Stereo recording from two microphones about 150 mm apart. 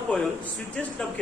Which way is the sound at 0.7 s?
5° left (ahead or behind).